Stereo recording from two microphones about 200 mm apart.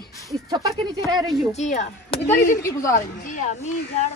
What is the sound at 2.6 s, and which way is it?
Speech, 15° left (ahead or behind).